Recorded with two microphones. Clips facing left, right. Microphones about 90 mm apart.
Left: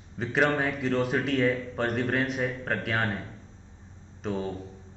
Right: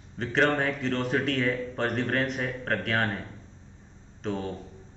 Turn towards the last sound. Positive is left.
turn(degrees=5)  # may be behind; listen again after turning